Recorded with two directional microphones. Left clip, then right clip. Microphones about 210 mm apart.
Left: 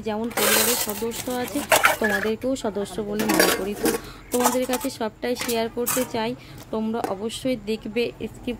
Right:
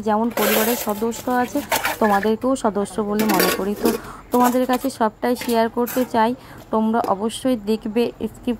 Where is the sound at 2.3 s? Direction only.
10° right (ahead or behind).